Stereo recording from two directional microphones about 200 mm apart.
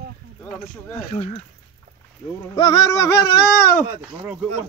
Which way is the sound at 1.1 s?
30° left (ahead or behind).